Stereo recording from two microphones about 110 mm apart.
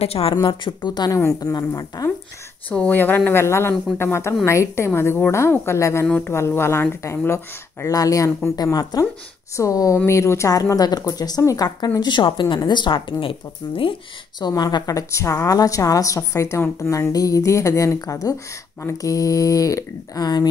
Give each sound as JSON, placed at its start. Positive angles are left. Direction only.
{"t": 0.0, "sound": "speech", "side_deg": 60}
{"t": 0.4, "sound": "speech", "side_deg": 45}
{"t": 2.7, "sound": "speech", "side_deg": 15}
{"t": 6.0, "sound": "speech", "side_deg": 15}
{"t": 14.4, "sound": "speech", "side_deg": 40}